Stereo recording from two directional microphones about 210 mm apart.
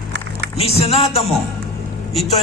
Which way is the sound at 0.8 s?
30° left (ahead or behind).